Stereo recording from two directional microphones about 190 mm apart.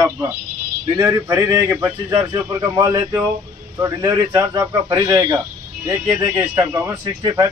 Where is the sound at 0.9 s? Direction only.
15° right (ahead or behind).